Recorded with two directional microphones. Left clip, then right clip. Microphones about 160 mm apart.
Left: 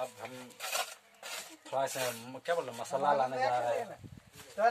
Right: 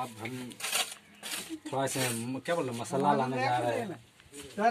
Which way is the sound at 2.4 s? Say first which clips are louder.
Right 1 dB; 15° left (ahead or behind).